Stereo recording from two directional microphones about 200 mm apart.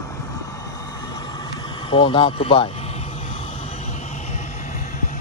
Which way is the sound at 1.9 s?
25° left (ahead or behind).